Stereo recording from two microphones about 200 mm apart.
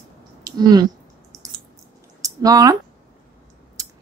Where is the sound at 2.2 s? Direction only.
20° right (ahead or behind).